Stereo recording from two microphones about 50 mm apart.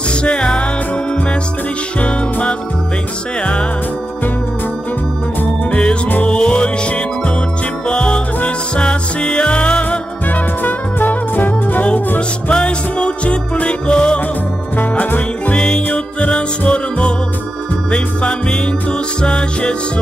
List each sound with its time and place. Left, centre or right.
0.1 s music: centre
2.0 s music: left
5.7 s music: left
10.6 s music: left
12.4 s music: left
14.8 s music: left
15.5 s music: centre